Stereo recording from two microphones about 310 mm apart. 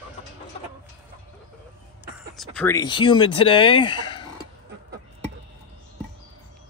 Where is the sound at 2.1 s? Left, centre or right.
Centre.